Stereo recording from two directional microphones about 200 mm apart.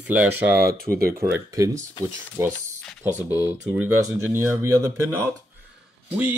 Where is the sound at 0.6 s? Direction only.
50° right (ahead or behind).